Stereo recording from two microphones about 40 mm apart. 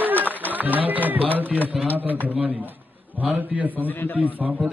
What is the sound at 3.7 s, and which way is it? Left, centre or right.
Speech, left.